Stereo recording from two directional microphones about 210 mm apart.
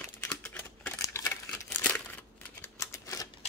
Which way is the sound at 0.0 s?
10° left (ahead or behind).